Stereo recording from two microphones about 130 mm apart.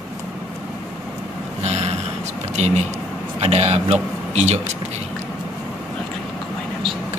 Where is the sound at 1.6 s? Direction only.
55° right (ahead or behind).